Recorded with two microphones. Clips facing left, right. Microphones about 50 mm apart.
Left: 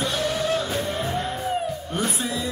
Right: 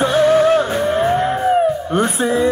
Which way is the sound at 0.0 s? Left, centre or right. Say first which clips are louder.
Right 12 dB; right.